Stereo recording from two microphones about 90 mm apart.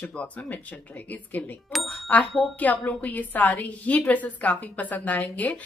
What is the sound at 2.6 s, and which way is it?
Speech, 15° left (ahead or behind).